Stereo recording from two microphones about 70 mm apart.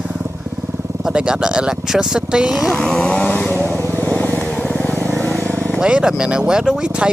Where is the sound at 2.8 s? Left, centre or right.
Centre.